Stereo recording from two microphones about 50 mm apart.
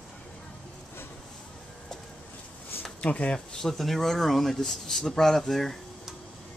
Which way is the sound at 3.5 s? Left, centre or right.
Centre.